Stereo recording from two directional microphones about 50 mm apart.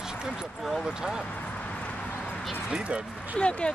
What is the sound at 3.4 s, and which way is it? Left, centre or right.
Speech, left.